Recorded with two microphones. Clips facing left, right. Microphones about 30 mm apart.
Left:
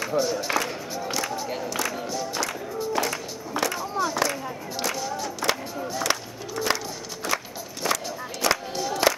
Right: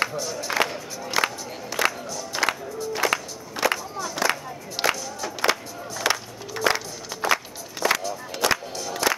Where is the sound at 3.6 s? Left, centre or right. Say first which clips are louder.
Right 5 dB; centre.